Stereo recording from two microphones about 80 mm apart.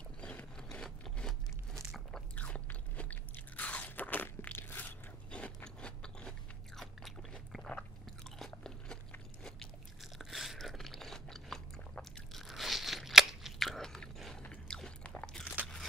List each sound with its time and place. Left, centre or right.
0.2 s a sound: centre
2.1 s biting: centre
6.8 s chewing: centre
10.1 s biting: centre